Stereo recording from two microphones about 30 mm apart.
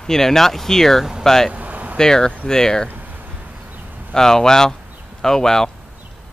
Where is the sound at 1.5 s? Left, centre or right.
Right.